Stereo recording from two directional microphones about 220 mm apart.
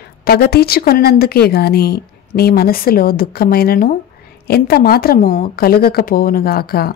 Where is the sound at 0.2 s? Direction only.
45° left (ahead or behind).